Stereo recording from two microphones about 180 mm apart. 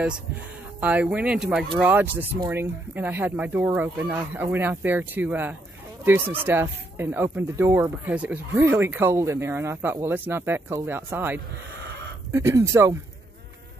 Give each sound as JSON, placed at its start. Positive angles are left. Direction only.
{"t": 0.7, "sound": "speech", "side_deg": -10}